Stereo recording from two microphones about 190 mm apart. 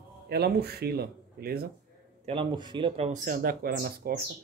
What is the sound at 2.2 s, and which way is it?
Speech, 25° right (ahead or behind).